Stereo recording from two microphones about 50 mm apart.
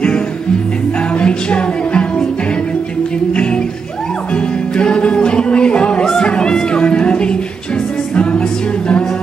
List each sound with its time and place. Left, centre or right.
1.1 s music: left
4.3 s music: left